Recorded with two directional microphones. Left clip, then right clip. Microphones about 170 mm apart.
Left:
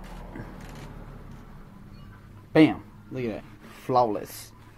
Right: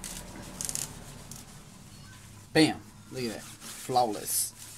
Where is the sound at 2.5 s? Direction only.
5° left (ahead or behind).